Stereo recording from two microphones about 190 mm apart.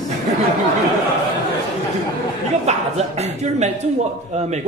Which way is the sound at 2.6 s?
35° right (ahead or behind).